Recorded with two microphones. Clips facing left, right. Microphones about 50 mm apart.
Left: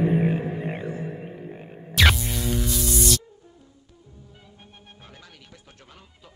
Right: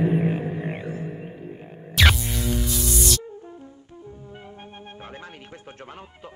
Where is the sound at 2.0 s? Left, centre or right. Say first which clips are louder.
Even; centre.